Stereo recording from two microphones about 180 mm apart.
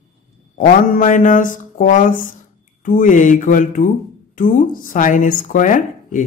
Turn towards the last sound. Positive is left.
turn(degrees=45)  # may be behind; listen again after turning